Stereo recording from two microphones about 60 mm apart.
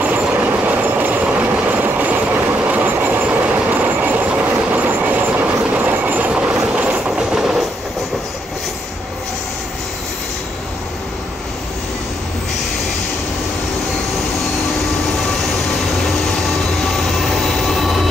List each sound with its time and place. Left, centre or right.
0.0 s train: right
2.7 s vehicle: right
7.1 s train: centre
16.9 s train: centre